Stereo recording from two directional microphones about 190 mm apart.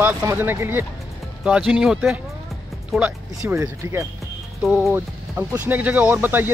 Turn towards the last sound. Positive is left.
turn(degrees=-10)  # may be behind; listen again after turning